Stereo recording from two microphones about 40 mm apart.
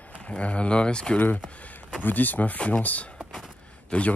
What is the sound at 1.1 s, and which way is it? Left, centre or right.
Speech, left.